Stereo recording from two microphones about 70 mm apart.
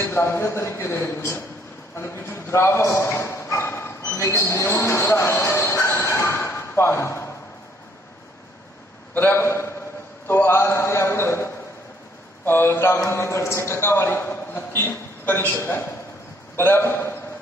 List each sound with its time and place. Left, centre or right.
0.0 s a man's voice: left
5.9 s a sound: left
6.7 s speech: left
9.3 s a man's voice: left